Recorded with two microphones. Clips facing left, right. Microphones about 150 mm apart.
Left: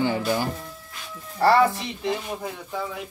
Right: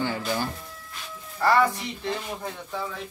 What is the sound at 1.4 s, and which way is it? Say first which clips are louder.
Speech: left 4 dB; 35° left (ahead or behind).